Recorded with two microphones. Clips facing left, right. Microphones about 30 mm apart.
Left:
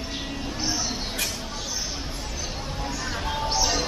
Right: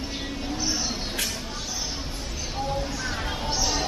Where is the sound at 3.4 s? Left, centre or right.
Left.